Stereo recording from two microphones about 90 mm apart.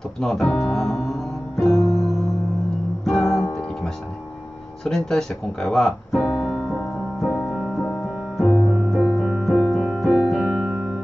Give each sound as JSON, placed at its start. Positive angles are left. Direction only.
{"t": 0.2, "sound": "music", "side_deg": 5}
{"t": 4.8, "sound": "speech", "side_deg": 5}
{"t": 6.3, "sound": "music", "side_deg": 0}
{"t": 7.8, "sound": "keyboard", "side_deg": 10}
{"t": 8.6, "sound": "music", "side_deg": 10}
{"t": 9.6, "sound": "keyboard", "side_deg": 5}
{"t": 10.1, "sound": "piano", "side_deg": -5}
{"t": 10.4, "sound": "music", "side_deg": -15}